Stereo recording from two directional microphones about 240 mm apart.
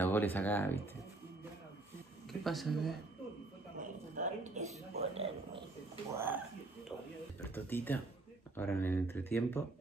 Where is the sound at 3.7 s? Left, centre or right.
Right.